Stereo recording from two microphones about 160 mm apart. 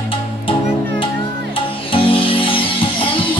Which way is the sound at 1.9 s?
35° left (ahead or behind).